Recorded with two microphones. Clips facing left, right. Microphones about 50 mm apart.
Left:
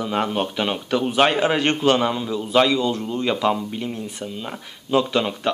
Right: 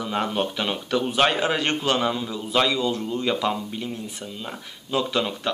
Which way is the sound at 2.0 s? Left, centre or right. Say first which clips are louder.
Left 3 dB; centre.